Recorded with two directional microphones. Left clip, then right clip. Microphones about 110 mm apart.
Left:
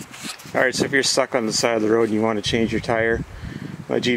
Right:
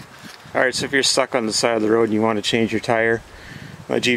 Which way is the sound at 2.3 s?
5° right (ahead or behind).